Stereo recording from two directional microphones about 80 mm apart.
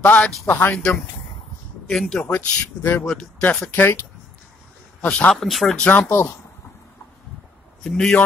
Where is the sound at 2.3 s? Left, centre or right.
Left.